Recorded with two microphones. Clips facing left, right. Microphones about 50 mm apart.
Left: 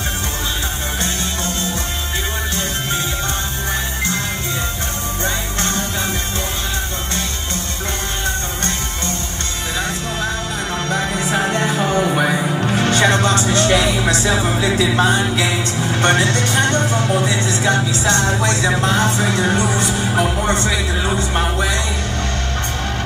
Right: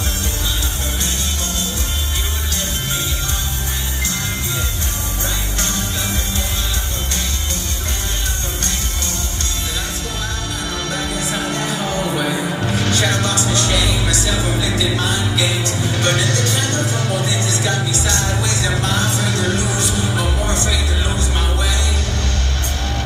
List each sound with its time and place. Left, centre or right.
10.9 s music: left